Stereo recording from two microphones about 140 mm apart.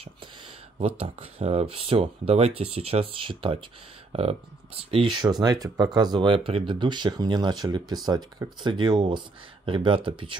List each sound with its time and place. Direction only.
0.7 s speech: 45° right (ahead or behind)
4.9 s speech: 35° right (ahead or behind)